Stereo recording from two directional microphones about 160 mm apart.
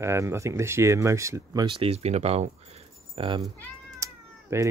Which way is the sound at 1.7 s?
40° right (ahead or behind).